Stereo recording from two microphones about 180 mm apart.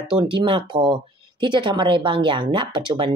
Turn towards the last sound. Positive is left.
turn(degrees=-25)  # may be behind; listen again after turning